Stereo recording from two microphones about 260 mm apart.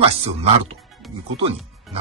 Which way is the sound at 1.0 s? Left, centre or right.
Centre.